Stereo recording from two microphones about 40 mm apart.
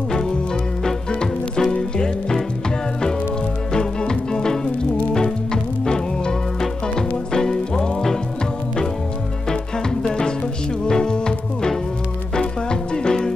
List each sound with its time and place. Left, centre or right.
0.8 s music: centre
3.7 s music: centre
9.5 s music: centre